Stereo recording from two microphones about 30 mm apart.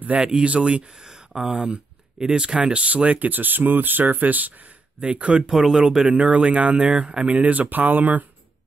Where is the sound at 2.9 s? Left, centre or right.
Right.